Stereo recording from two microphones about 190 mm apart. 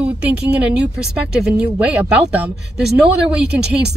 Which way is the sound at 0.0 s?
5° right (ahead or behind).